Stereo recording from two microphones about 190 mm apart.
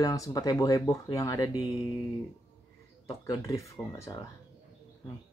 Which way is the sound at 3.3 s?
20° left (ahead or behind).